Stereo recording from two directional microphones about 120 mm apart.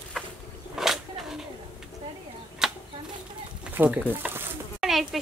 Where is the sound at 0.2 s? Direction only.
5° left (ahead or behind).